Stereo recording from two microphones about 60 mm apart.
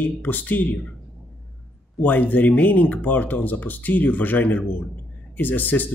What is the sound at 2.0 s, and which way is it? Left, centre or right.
Speech, left.